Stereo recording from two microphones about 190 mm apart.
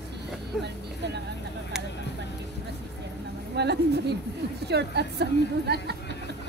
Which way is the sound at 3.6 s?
60° right (ahead or behind).